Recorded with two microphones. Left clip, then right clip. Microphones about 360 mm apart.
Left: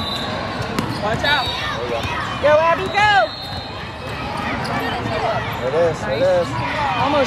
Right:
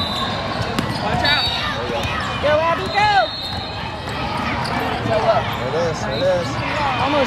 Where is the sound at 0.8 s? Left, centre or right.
Centre.